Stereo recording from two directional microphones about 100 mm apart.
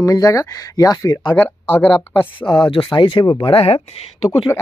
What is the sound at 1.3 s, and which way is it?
Speech, 20° left (ahead or behind).